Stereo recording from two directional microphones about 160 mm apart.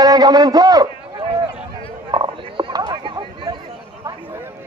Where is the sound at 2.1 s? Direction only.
30° right (ahead or behind).